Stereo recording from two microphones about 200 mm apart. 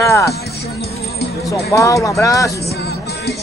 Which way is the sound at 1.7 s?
15° left (ahead or behind).